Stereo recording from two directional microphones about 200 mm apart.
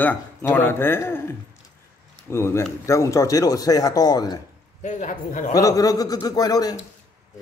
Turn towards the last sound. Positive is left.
turn(degrees=20)  # may be behind; listen again after turning